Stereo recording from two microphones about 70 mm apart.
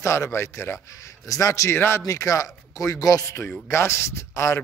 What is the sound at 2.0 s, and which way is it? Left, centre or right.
Speech, left.